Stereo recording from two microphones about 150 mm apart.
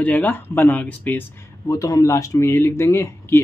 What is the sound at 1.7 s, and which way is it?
Speech, 25° left (ahead or behind).